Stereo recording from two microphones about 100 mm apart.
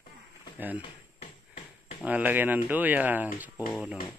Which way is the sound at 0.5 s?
20° right (ahead or behind).